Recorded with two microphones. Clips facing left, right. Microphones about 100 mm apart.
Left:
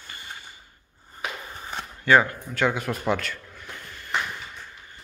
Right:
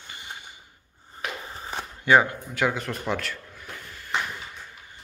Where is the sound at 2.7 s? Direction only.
5° left (ahead or behind).